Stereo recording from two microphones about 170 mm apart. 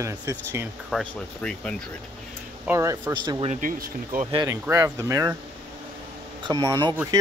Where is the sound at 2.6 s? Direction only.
15° right (ahead or behind).